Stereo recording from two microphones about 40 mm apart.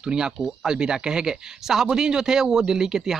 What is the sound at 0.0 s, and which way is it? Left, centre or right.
Speech, centre.